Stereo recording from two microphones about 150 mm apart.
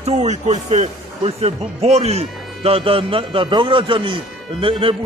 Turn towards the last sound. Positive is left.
turn(degrees=-35)  # may be behind; listen again after turning